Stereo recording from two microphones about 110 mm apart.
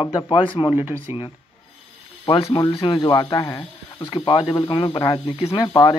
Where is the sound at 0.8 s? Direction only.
20° right (ahead or behind).